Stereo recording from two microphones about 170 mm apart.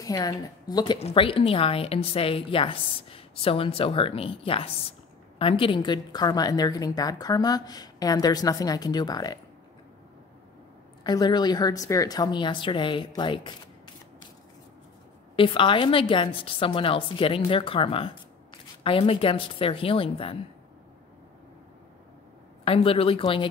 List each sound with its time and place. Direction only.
0.0 s a woman's voice: 20° left (ahead or behind)
0.9 s a woman's voice: 35° left (ahead or behind)
11.1 s a woman's voice: 25° left (ahead or behind)
15.3 s a woman's voice: 30° left (ahead or behind)
22.7 s a woman's voice: 35° left (ahead or behind)